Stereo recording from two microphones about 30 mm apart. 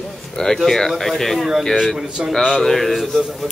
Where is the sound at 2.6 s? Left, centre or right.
Centre.